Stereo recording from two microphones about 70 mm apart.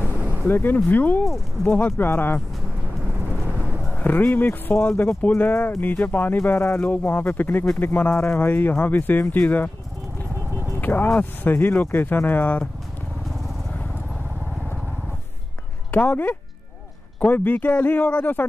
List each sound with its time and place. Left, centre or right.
0.4 s speech: left
3.9 s speech: left
10.8 s speech: left
15.9 s speech: left